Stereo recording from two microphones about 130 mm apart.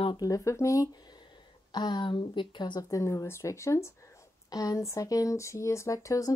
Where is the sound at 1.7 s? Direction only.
35° left (ahead or behind).